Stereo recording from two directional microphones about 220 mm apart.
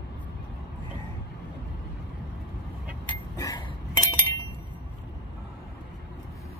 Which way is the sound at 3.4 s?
15° left (ahead or behind).